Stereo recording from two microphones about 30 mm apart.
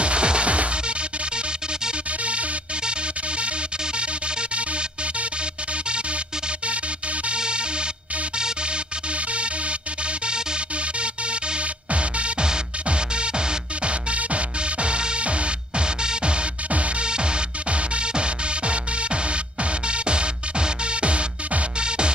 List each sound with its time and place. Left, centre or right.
0.0 s music: right
7.3 s music: right
9.3 s music: right
11.9 s music: right